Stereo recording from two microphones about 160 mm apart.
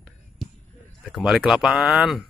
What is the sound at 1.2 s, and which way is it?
Speech, 5° right (ahead or behind).